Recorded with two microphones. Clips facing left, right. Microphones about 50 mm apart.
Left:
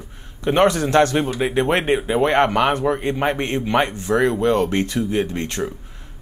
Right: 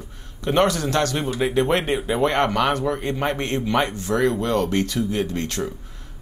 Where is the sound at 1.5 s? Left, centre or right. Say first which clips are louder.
Left 3 dB; left.